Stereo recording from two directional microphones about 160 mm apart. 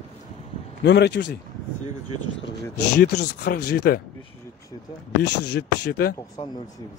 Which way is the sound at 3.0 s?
75° left (ahead or behind).